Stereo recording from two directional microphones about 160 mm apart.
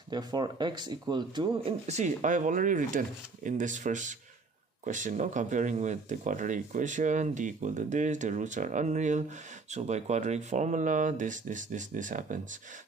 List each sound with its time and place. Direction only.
0.1 s speech: 25° right (ahead or behind); by 12.4 s 55° right (ahead or behind)